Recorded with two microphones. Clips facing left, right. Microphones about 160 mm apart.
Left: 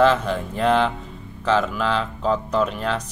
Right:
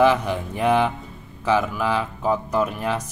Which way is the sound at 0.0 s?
15° right (ahead or behind).